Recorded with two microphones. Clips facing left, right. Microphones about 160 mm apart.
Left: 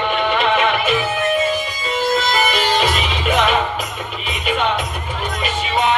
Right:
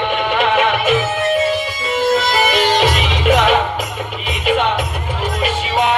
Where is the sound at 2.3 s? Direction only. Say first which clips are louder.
Right 3 dB; 70° right (ahead or behind).